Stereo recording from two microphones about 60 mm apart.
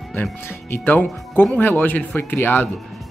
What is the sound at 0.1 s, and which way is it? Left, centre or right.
Speech, left.